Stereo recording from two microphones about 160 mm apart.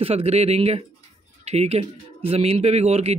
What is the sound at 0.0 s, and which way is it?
A man's voice, 40° right (ahead or behind).